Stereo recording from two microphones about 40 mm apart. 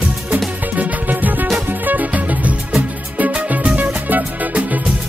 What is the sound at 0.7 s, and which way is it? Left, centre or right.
Music, right.